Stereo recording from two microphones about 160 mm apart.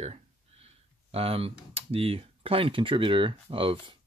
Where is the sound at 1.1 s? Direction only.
40° right (ahead or behind).